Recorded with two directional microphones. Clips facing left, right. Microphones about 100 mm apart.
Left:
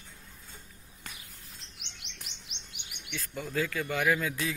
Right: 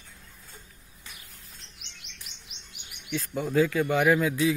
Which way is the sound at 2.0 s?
70° left (ahead or behind).